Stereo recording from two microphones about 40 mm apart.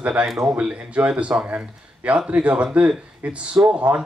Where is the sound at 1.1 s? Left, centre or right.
Right.